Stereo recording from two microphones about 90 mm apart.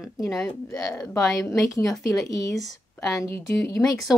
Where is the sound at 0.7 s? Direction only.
30° left (ahead or behind).